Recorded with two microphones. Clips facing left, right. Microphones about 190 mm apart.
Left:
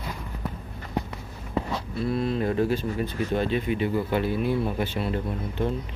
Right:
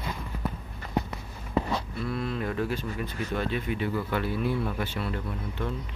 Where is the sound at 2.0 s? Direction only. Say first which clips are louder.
Left 10 dB; 30° left (ahead or behind).